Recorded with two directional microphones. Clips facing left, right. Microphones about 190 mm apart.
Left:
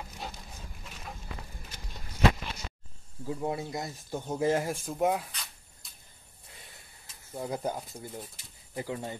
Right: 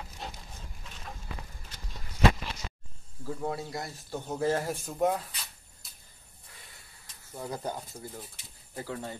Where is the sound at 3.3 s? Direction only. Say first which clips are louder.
Left 1 dB; 15° left (ahead or behind).